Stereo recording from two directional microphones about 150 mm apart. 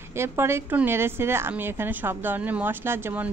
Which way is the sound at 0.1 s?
15° right (ahead or behind).